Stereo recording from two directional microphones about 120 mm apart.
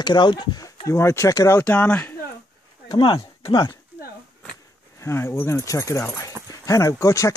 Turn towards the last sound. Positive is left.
turn(degrees=25)  # may be behind; listen again after turning